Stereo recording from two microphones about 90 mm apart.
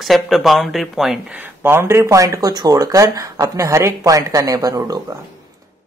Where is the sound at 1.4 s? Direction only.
25° right (ahead or behind).